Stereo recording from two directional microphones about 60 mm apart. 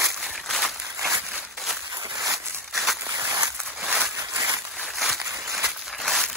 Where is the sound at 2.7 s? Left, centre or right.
Centre.